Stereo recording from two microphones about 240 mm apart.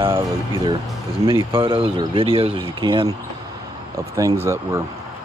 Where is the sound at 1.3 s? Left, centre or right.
Right.